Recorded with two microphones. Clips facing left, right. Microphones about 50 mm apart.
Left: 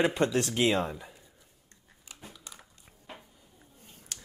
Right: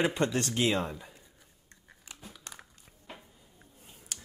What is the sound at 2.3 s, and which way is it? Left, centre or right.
Biting, centre.